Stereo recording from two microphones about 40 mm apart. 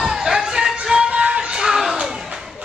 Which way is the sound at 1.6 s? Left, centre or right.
Centre.